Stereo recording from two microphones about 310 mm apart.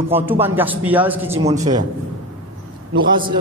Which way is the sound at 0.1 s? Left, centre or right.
Centre.